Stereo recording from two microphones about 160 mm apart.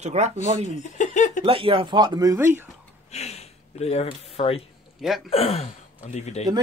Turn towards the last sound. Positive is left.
turn(degrees=45)  # may be behind; listen again after turning